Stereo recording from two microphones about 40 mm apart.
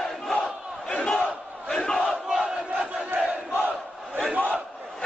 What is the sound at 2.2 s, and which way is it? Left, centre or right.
Crowd, centre.